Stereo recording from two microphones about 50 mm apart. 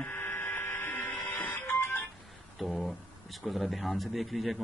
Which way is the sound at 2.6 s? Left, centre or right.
Centre.